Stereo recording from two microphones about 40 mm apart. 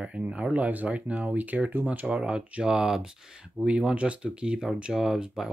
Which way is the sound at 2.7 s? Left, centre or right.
Centre.